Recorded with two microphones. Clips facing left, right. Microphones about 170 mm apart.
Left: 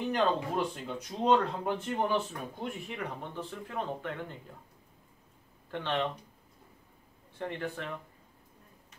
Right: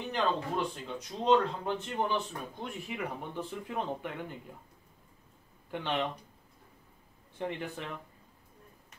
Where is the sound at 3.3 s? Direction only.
15° right (ahead or behind).